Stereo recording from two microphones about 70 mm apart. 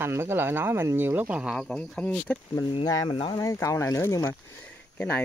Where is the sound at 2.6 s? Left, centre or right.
Left.